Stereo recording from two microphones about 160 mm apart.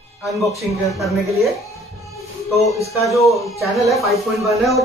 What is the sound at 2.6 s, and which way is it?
Speech, 20° left (ahead or behind).